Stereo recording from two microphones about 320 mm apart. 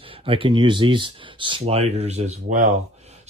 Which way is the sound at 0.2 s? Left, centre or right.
Centre.